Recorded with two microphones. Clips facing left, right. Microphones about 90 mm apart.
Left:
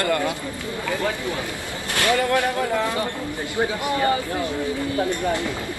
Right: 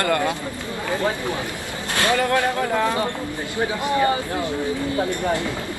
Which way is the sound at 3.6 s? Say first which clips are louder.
Right 2 dB; 25° right (ahead or behind).